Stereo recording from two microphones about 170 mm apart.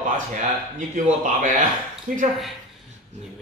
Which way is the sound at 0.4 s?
50° right (ahead or behind).